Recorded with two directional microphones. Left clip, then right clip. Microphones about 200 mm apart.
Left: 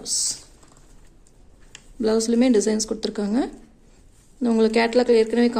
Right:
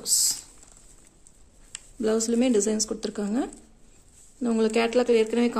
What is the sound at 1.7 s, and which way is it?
A woman's voice, 40° right (ahead or behind).